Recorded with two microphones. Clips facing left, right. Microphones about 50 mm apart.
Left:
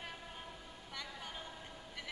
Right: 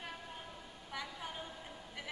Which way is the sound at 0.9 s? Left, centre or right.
Centre.